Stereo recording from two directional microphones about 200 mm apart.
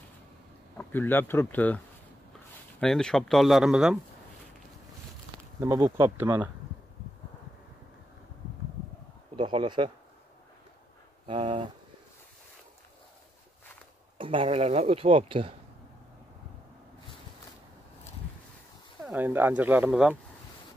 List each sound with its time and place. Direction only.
0.7 s speech: 10° left (ahead or behind)
2.8 s speech: 5° left (ahead or behind)
5.6 s speech: 15° right (ahead or behind)
9.4 s speech: 25° right (ahead or behind)
11.2 s speech: 25° right (ahead or behind)
14.1 s speech: 25° right (ahead or behind)
19.0 s speech: 10° right (ahead or behind)